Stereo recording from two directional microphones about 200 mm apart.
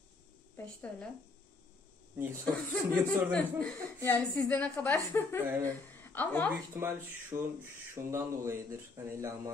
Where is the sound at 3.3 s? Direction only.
5° left (ahead or behind).